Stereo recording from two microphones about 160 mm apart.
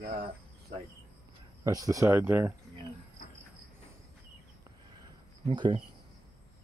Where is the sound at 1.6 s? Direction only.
20° right (ahead or behind).